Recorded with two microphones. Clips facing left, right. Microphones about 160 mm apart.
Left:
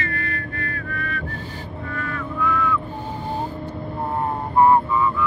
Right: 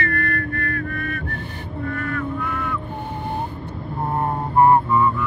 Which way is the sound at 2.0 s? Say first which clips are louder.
Left 3 dB; 55° right (ahead or behind).